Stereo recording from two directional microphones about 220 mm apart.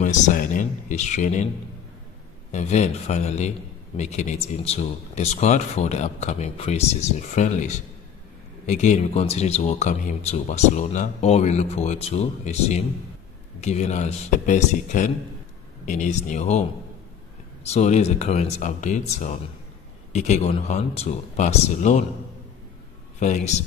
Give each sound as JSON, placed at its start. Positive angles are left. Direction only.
{"t": 0.0, "sound": "a sound", "side_deg": 35}
{"t": 2.5, "sound": "speech", "side_deg": 30}
{"t": 17.6, "sound": "speech", "side_deg": 30}
{"t": 23.1, "sound": "speech", "side_deg": 35}